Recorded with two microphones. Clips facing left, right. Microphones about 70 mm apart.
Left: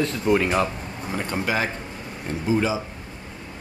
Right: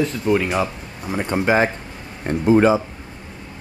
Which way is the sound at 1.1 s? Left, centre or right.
Centre.